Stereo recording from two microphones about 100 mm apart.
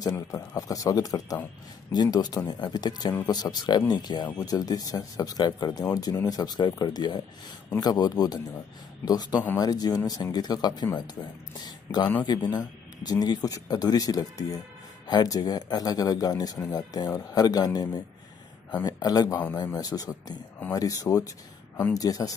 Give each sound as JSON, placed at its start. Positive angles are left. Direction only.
{"t": 0.6, "sound": "speech", "side_deg": 35}